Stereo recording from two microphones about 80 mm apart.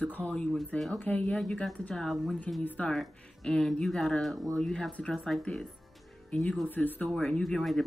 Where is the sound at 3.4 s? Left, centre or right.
Centre.